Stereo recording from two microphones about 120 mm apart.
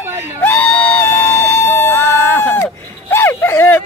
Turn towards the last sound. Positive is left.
turn(degrees=20)  # may be behind; listen again after turning